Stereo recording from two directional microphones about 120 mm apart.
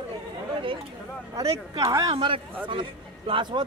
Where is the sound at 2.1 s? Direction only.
45° right (ahead or behind).